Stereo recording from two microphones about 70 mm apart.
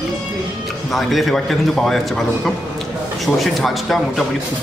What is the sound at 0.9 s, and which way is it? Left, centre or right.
A man's voice, centre.